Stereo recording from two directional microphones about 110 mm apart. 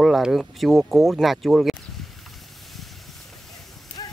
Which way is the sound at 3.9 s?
15° left (ahead or behind).